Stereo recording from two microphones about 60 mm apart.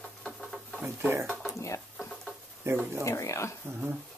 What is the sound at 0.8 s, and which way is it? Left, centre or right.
Speech, right.